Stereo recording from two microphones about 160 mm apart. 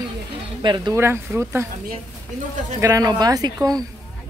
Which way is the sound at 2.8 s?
20° right (ahead or behind).